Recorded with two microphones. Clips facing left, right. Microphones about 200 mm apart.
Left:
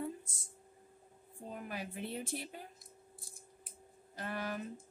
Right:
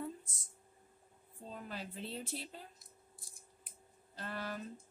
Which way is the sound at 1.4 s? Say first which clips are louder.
Left 3 dB; 15° left (ahead or behind).